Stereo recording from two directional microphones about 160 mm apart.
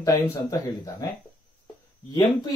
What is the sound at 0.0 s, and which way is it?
Speech, 20° left (ahead or behind).